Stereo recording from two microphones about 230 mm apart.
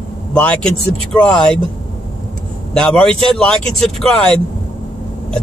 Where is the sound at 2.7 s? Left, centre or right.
Centre.